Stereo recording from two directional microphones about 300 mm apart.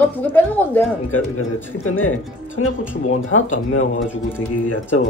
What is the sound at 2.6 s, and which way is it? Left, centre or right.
Speech, left.